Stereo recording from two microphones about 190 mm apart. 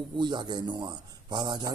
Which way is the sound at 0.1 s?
25° right (ahead or behind).